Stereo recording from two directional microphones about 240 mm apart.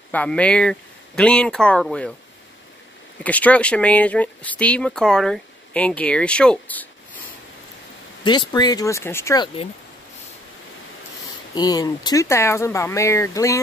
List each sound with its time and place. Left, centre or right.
0.1 s speech: centre
3.3 s speech: centre
8.2 s speech: centre
11.5 s speech: centre